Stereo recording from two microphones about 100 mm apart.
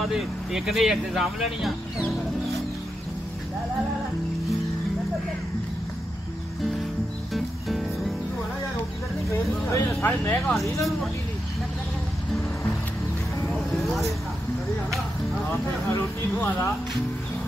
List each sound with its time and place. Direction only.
0.1 s speech: 5° right (ahead or behind)
7.3 s music: centre (ahead or behind)
10.0 s speech: 15° left (ahead or behind)
10.5 s speech: centre (ahead or behind)
15.5 s speech: 25° left (ahead or behind)